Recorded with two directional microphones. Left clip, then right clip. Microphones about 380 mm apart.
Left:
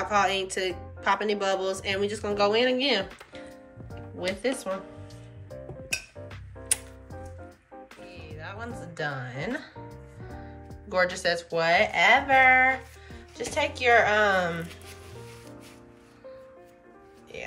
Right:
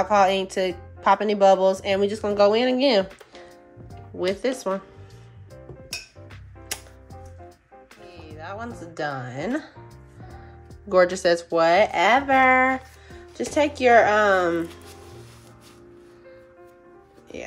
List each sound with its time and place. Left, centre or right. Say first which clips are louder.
0.0 s speech: right 6 dB; right
4.4 s speech: right 4 dB; right
8.4 s music: right 4 dB; right
10.9 s speech: right 7 dB; right